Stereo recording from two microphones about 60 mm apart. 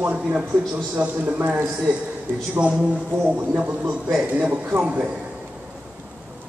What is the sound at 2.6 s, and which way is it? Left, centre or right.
A man's voice, centre.